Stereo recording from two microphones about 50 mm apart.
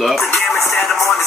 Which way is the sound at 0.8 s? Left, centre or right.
Centre.